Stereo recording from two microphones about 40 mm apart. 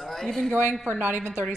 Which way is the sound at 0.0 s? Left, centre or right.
Centre.